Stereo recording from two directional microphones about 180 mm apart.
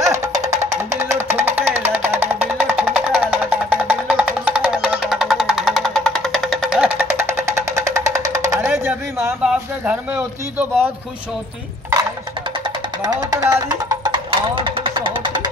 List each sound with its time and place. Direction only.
0.0 s music: 20° right (ahead or behind)
2.0 s music: 35° right (ahead or behind)
2.5 s music: 10° right (ahead or behind)
13.0 s music: 20° right (ahead or behind)